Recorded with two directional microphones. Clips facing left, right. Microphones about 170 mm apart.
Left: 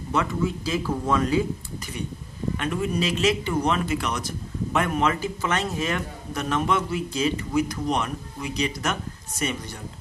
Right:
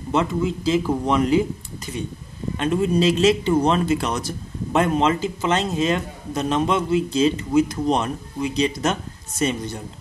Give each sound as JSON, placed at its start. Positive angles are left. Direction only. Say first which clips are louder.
{"t": 0.1, "sound": "a man's voice", "louder": "right 4 dB", "side_deg": -20}
{"t": 2.5, "sound": "a man's voice", "louder": "right 7 dB", "side_deg": -25}